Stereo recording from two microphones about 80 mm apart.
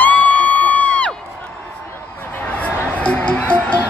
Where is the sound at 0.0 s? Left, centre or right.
Centre.